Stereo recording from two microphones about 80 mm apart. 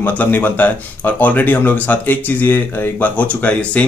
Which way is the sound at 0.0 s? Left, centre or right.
Left.